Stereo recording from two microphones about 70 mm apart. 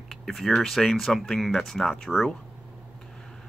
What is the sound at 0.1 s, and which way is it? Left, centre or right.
Speech, centre.